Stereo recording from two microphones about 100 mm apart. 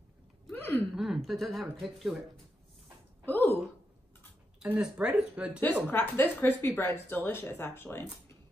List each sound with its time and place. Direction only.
0.6 s a sound: 20° left (ahead or behind)
0.9 s speech: 5° right (ahead or behind)
3.3 s speech: 20° left (ahead or behind)
4.6 s speech: 10° right (ahead or behind)
5.9 s speech: 20° left (ahead or behind)